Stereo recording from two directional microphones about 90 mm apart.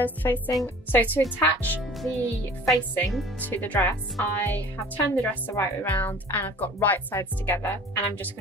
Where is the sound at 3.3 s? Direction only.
20° left (ahead or behind).